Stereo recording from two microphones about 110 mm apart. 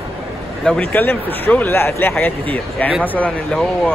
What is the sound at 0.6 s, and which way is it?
Speech, 10° left (ahead or behind).